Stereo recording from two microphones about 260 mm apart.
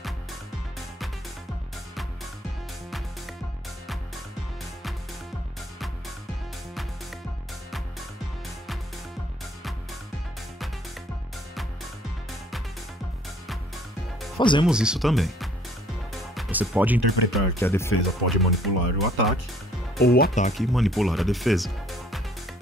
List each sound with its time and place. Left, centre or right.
12.3 s music: centre
14.4 s speech: centre
14.7 s speech: centre
16.1 s music: centre
17.6 s speech: centre
20.0 s speech: left
20.5 s speech: centre